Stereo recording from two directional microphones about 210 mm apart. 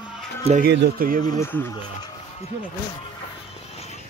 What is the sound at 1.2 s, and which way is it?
Speech, 15° left (ahead or behind).